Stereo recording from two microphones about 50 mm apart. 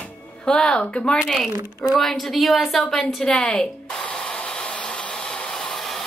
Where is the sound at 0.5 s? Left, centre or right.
Centre.